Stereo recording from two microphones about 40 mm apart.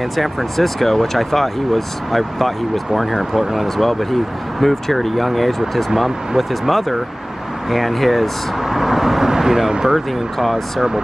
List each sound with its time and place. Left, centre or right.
0.1 s speech: centre
9.9 s speech: centre